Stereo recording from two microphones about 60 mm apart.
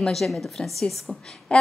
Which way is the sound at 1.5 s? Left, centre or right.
Centre.